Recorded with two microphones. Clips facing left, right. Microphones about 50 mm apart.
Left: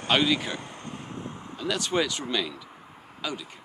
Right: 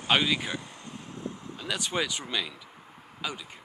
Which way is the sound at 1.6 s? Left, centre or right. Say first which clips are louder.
Left 4 dB; centre.